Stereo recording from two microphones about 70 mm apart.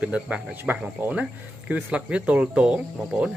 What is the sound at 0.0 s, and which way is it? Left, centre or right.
Speech, centre.